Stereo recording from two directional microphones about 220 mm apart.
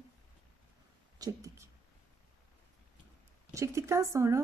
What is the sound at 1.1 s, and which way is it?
Speech, 15° right (ahead or behind).